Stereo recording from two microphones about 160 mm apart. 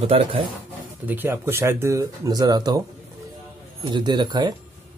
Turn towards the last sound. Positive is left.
turn(degrees=-25)  # may be behind; listen again after turning